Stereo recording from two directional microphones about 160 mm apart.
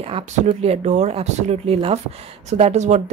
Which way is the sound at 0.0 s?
35° right (ahead or behind).